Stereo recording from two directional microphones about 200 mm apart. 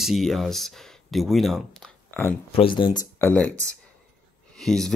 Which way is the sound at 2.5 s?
25° left (ahead or behind).